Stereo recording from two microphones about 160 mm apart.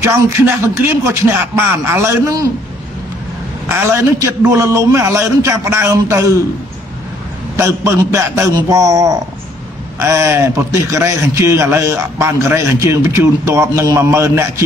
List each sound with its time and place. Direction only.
0.0 s a man's voice: 15° right (ahead or behind)
3.6 s a man's voice: 15° right (ahead or behind)
7.5 s a man's voice: 20° right (ahead or behind)